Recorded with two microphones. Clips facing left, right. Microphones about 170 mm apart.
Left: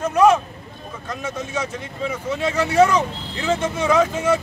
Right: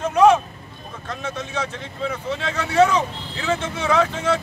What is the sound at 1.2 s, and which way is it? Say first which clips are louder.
Speech: left 1 dB; 10° left (ahead or behind).